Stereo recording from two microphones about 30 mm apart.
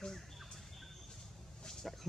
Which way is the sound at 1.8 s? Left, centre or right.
Centre.